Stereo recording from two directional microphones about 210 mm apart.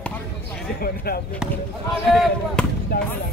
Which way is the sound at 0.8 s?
45° left (ahead or behind).